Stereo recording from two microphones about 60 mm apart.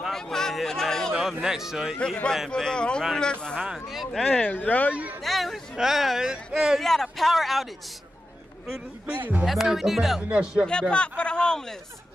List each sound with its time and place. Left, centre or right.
0.1 s a sound: centre
1.4 s speech: centre
2.5 s speech: centre
3.5 s speech: centre
4.3 s speech: left
4.9 s a sound: right
5.2 s a sound: centre
5.8 s speech: centre
6.8 s speech: centre
9.0 s speech: right
9.5 s speech: centre
10.3 s speech: centre
10.7 s speech: centre